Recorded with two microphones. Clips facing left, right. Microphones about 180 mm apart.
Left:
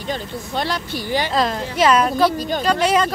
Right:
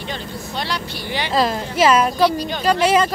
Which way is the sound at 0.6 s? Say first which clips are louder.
Left 3 dB; 45° left (ahead or behind).